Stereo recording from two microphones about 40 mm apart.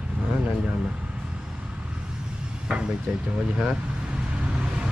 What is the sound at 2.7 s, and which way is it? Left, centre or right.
Speech, centre.